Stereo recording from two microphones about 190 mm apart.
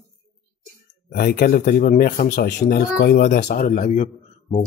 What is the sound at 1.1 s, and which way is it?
Speech, 50° left (ahead or behind).